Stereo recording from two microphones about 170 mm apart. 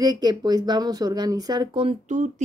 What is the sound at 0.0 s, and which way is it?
Speech, 25° right (ahead or behind).